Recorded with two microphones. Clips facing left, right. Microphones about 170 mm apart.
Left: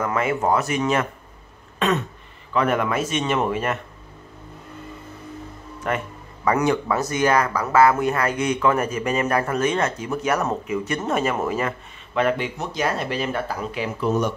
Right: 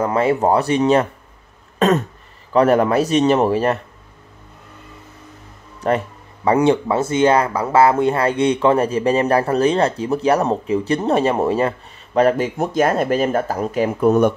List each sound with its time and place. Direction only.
0.0 s speech: 30° right (ahead or behind)
1.8 s throat clearing: 40° right (ahead or behind)
2.5 s speech: 35° right (ahead or behind)
5.8 s speech: 35° right (ahead or behind); by 14.3 s 55° right (ahead or behind)